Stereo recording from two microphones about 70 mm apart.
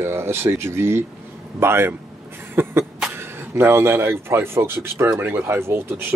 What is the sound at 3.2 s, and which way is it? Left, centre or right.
Speech, right.